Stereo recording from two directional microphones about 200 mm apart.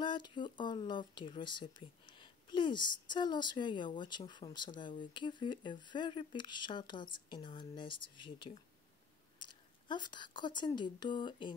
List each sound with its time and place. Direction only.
0.0 s speech: 25° left (ahead or behind)